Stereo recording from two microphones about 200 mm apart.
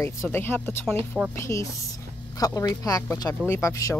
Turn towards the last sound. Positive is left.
turn(degrees=15)  # may be behind; listen again after turning